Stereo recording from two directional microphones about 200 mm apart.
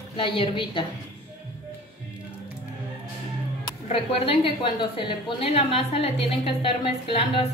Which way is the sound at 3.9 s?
25° left (ahead or behind).